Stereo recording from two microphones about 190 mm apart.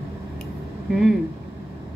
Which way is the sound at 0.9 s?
Centre (ahead or behind).